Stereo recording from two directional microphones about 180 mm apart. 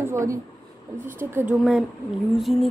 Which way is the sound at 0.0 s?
15° right (ahead or behind).